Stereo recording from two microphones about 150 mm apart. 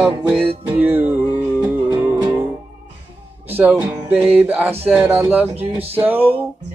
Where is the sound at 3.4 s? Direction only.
10° right (ahead or behind).